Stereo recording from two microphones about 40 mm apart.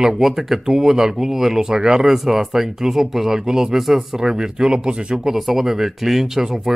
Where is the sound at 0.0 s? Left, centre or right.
Centre.